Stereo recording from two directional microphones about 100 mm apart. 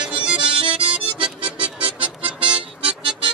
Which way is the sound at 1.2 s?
60° right (ahead or behind).